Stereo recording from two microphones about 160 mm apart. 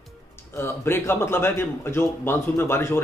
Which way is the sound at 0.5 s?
15° left (ahead or behind).